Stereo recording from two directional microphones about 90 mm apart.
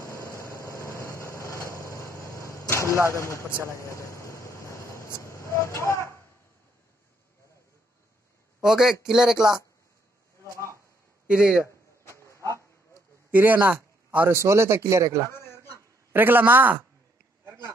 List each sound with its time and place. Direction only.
0.6 s vehicle: 30° left (ahead or behind)
2.2 s arrow: 35° left (ahead or behind)
3.2 s a man's voice: 35° left (ahead or behind)
3.7 s train: 35° left (ahead or behind)
8.6 s a man's voice: 5° right (ahead or behind)
11.2 s a man's voice: 10° right (ahead or behind)
12.0 s a sound: 30° left (ahead or behind)
13.3 s a man's voice: 20° right (ahead or behind); by 15.2 s 35° right (ahead or behind)
15.2 s a sound: 30° left (ahead or behind)
16.1 s a man's voice: 25° right (ahead or behind)